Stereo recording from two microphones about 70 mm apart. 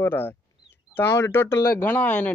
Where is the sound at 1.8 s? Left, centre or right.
Left.